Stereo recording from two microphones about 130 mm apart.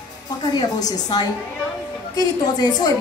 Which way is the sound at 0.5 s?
30° left (ahead or behind).